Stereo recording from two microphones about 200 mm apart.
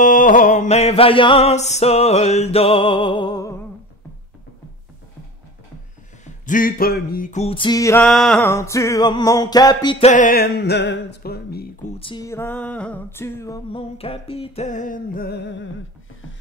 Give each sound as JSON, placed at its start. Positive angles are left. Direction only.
{"t": 0.0, "sound": "mantra", "side_deg": 40}
{"t": 6.4, "sound": "music", "side_deg": 45}
{"t": 12.0, "sound": "music", "side_deg": 20}
{"t": 13.7, "sound": "mantra", "side_deg": 30}